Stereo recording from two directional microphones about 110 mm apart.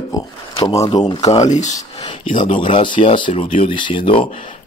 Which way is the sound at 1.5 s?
90° left.